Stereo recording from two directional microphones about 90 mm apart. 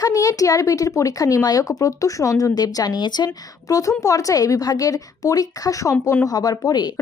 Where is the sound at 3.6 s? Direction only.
40° left (ahead or behind).